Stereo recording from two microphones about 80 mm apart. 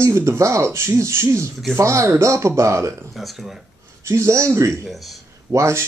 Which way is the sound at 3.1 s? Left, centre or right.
Centre.